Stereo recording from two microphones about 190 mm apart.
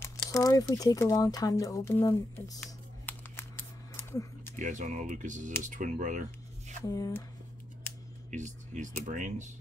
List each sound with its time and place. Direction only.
0.0 s speech: 15° left (ahead or behind)
2.6 s a sound: 10° left (ahead or behind)
4.6 s speech: 40° right (ahead or behind)
6.8 s speech: 15° left (ahead or behind)
8.3 s speech: 40° right (ahead or behind)